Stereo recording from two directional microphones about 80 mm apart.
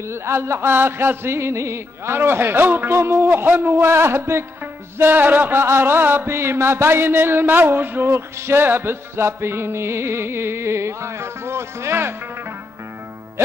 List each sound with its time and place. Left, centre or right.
0.1 s mantra: right